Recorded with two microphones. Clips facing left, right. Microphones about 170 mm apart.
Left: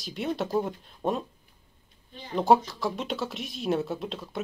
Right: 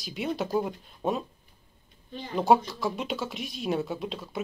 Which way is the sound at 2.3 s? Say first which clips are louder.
Left 1 dB; centre (ahead or behind).